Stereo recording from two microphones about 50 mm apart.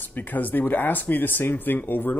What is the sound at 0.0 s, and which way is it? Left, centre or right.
Speech, left.